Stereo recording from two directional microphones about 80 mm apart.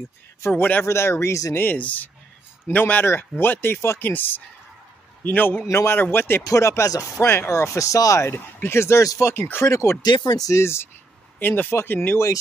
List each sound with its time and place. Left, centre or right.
0.4 s speech: left
0.8 s speech: left
1.6 s speech: centre
5.7 s speech: left
5.9 s speech: left
6.4 s speech: left
7.2 s speech: left
9.3 s speech: left
10.0 s speech: left
10.6 s speech: left